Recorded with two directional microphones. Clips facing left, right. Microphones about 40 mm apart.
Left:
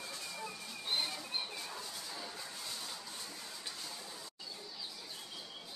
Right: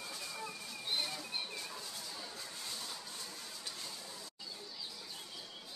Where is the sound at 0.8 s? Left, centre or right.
Centre.